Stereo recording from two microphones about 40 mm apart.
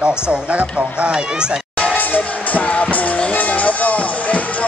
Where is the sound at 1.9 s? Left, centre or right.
Left.